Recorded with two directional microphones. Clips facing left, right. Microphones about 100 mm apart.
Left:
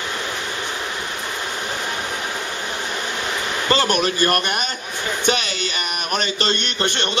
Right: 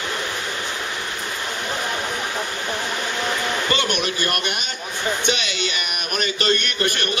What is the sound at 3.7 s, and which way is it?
A man's voice, 35° left (ahead or behind).